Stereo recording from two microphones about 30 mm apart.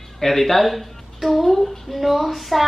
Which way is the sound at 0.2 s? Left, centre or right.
Centre.